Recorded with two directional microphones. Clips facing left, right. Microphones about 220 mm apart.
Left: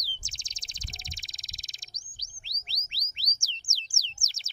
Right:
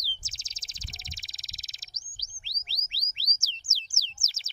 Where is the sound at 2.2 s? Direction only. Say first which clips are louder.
Right 2 dB; 5° right (ahead or behind).